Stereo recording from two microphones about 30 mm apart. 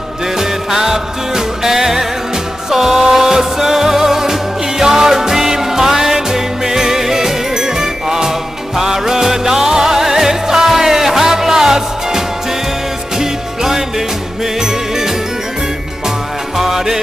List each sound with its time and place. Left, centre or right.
0.4 s music: centre
13.2 s music: centre
16.5 s music: centre